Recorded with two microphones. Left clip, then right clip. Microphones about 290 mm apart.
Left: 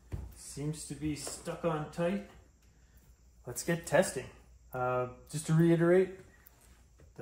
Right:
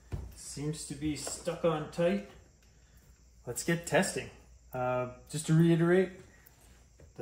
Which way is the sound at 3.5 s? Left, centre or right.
Centre.